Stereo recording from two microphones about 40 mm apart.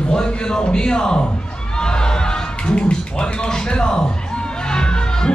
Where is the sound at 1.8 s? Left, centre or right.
Centre.